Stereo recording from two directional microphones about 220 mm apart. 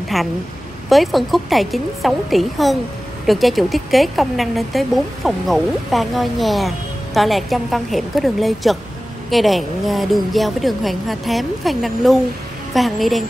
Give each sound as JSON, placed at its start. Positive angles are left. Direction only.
{"t": 0.1, "sound": "a woman's voice", "side_deg": 0}